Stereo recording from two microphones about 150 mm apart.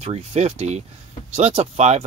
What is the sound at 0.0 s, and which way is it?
Speech, 45° right (ahead or behind).